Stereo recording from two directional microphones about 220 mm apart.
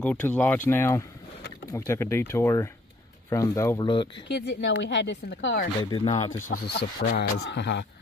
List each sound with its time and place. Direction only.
0.0 s speech: 5° left (ahead or behind)
4.3 s speech: 55° left (ahead or behind)
5.8 s speech: 20° left (ahead or behind)
6.5 s speech: 45° left (ahead or behind)